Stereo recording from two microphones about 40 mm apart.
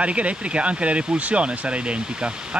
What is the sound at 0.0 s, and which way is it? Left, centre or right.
Speech, right.